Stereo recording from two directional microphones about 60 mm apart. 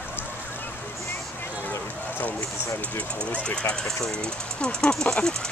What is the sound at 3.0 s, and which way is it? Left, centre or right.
Speech, centre.